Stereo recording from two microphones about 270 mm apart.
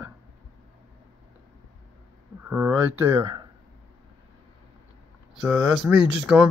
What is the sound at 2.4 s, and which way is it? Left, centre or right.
Speech, centre.